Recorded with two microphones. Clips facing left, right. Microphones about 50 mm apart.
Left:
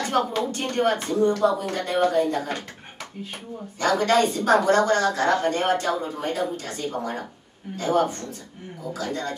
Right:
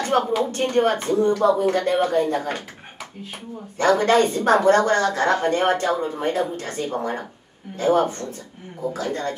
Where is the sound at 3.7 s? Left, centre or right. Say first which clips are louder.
Right 3 dB; right.